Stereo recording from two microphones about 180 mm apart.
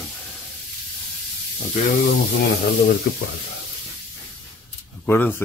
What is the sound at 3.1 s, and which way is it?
Speech, 65° left (ahead or behind).